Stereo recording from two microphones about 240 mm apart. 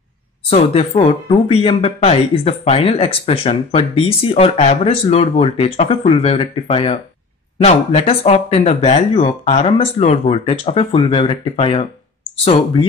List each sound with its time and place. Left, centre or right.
0.5 s speech: left